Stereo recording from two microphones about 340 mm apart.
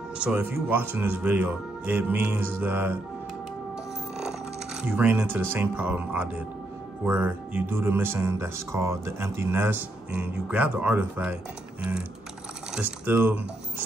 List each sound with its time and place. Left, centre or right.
0.2 s speech: centre
4.8 s speech: centre
12.7 s speech: centre